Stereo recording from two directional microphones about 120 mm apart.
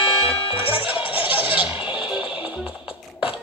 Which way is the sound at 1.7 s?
10° right (ahead or behind).